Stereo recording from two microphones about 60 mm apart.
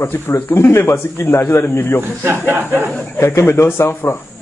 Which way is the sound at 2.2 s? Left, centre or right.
Right.